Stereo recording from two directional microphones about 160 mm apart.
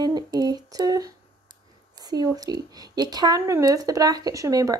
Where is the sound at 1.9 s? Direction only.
25° right (ahead or behind).